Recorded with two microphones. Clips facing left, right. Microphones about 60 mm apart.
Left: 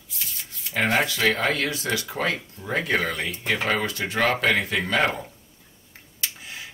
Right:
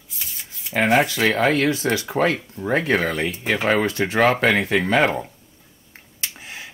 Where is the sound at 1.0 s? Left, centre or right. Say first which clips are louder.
Right 4 dB; right.